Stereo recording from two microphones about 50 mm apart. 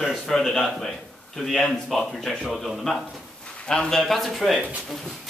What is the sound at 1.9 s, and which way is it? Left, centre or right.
Speech, centre.